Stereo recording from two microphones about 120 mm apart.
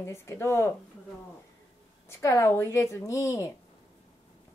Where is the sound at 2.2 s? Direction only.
25° left (ahead or behind).